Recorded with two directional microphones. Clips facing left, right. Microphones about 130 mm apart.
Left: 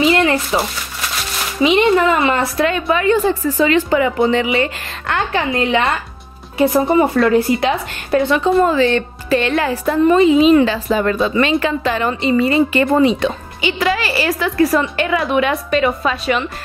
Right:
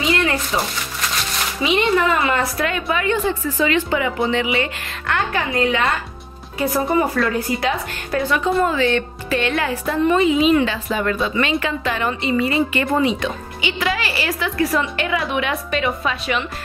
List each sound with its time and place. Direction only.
1.6 s a woman's voice: 25° left (ahead or behind); by 16.3 s 45° left (ahead or behind)